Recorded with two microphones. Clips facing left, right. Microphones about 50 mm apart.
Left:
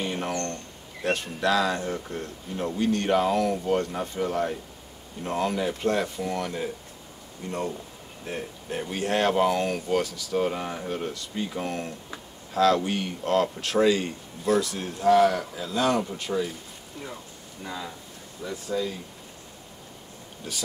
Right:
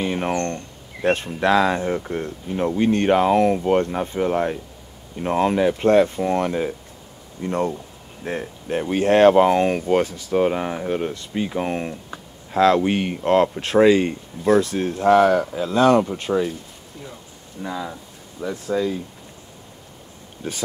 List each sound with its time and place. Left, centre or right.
0.0 s speech: right
17.6 s speech: right
18.4 s speech: right
20.4 s speech: right